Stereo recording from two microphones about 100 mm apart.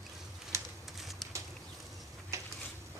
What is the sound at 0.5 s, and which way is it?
Pigeon, 30° right (ahead or behind).